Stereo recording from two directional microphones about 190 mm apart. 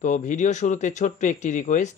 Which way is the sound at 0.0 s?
40° left (ahead or behind).